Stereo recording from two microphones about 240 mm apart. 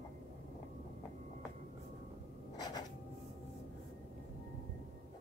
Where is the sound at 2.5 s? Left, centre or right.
Centre.